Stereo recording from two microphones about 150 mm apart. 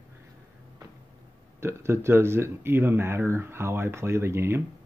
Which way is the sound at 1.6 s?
15° right (ahead or behind).